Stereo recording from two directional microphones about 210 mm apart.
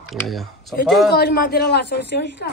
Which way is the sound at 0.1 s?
Centre (ahead or behind).